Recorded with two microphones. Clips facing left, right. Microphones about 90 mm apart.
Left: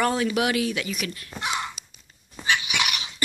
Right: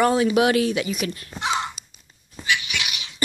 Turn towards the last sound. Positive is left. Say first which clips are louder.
# left 3 dB
turn(degrees=45)  # may be behind; listen again after turning